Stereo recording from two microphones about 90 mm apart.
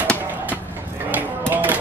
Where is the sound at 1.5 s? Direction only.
20° right (ahead or behind).